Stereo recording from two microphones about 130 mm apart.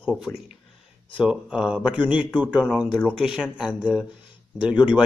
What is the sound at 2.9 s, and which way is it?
Speech, 10° left (ahead or behind).